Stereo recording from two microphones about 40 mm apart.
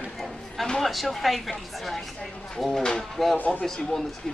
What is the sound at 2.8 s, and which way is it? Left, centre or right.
Speech, centre.